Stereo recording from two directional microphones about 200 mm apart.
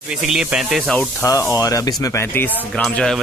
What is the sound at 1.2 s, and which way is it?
Speech, 15° left (ahead or behind).